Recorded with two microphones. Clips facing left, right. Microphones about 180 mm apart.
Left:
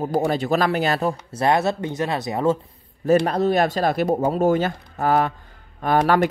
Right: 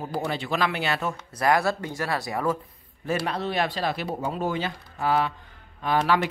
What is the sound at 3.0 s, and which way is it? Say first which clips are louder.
Speech: left 10 dB; 45° left (ahead or behind).